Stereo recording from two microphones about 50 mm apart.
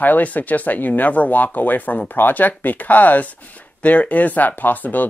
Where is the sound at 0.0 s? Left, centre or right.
Left.